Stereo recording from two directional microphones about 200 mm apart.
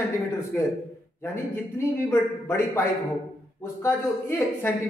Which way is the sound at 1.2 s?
10° left (ahead or behind).